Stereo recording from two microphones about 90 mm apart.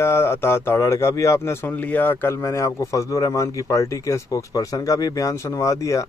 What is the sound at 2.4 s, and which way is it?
Speech, 35° left (ahead or behind).